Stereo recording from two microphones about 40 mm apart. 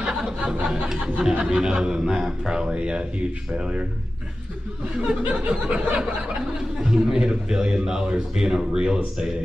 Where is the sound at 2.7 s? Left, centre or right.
Right.